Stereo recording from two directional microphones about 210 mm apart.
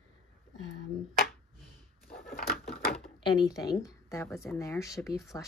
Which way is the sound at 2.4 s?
45° left (ahead or behind).